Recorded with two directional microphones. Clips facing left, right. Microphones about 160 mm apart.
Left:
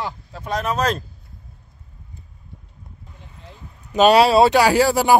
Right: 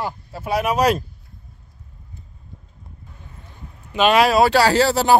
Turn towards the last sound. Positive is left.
turn(degrees=10)  # may be behind; listen again after turning